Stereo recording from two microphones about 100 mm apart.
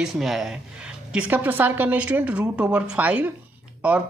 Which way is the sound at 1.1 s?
15° right (ahead or behind).